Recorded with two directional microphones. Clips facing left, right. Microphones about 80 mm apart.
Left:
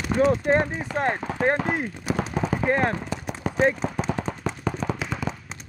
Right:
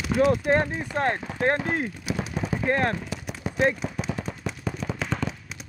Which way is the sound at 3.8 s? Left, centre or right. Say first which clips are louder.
Left 4 dB; left.